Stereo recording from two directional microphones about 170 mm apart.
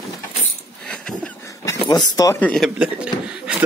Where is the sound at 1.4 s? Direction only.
20° left (ahead or behind).